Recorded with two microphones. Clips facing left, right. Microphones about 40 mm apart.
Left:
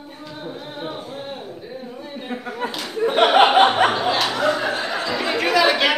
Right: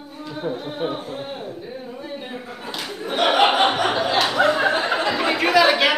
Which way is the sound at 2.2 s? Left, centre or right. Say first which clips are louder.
Left 5 dB; left.